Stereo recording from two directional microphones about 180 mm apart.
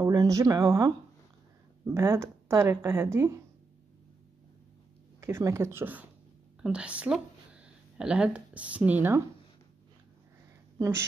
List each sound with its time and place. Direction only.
0.0 s speech: 20° right (ahead or behind)
5.2 s speech: 15° right (ahead or behind)
10.8 s a woman's voice: 15° right (ahead or behind)